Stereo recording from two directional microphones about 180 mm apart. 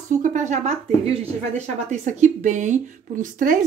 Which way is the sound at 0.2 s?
45° right (ahead or behind).